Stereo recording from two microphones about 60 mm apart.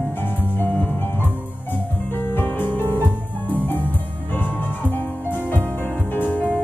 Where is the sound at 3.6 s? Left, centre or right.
Left.